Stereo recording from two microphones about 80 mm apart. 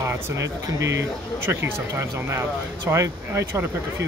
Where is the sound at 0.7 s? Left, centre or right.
Right.